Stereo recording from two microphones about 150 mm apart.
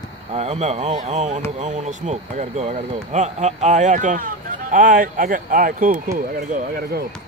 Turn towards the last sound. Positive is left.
turn(degrees=-70)  # may be behind; listen again after turning